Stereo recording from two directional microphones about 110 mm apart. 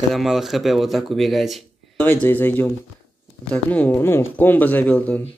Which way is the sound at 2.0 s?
15° left (ahead or behind).